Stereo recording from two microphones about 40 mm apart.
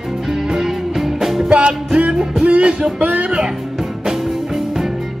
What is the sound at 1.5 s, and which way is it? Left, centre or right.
Music, right.